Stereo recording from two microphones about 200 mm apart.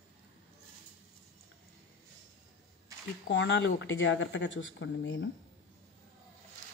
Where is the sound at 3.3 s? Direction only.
65° left (ahead or behind).